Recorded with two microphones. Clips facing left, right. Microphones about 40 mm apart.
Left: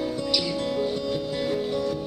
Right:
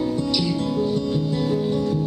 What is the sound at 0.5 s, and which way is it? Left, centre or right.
Music, centre.